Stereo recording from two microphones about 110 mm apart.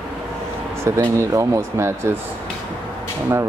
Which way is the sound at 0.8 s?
25° right (ahead or behind).